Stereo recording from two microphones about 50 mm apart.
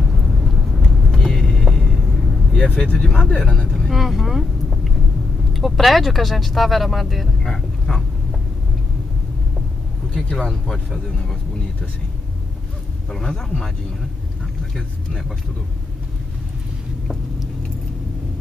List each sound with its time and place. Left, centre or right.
0.4 s vehicle: centre
1.1 s vehicle: centre
2.5 s speech: left
3.6 s vehicle: centre
3.9 s speech: centre
7.4 s speech: centre
10.3 s speech: centre
13.1 s speech: centre